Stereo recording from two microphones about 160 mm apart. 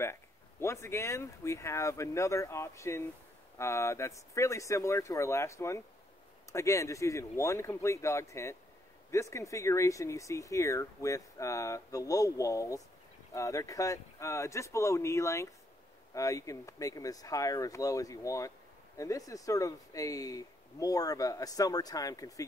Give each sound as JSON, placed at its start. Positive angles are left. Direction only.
{"t": 0.0, "sound": "speech", "side_deg": 15}